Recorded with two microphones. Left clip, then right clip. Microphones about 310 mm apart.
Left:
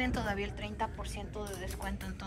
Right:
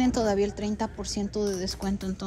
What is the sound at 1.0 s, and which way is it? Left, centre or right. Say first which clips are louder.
Speech: right 11 dB; right.